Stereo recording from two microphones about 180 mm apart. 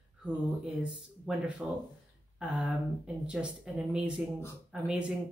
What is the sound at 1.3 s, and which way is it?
Speech, 5° right (ahead or behind).